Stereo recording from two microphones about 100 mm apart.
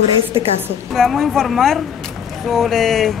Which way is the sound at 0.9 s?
Centre (ahead or behind).